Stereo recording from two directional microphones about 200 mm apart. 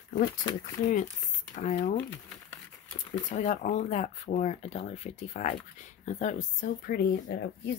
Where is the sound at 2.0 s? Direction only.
10° left (ahead or behind).